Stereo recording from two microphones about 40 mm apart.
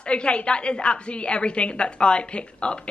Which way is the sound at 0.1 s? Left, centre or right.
Left.